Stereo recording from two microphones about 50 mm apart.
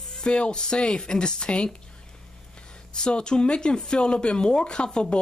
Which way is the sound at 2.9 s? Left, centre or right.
Centre.